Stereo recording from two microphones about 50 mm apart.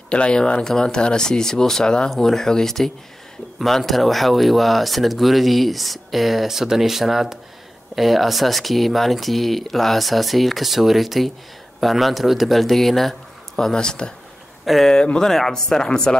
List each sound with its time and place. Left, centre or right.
0.1 s speech: left
14.6 s speech: centre